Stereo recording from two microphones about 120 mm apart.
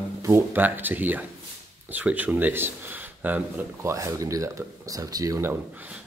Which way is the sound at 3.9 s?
25° right (ahead or behind).